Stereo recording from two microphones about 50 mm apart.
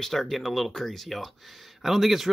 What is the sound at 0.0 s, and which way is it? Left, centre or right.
Speech, centre.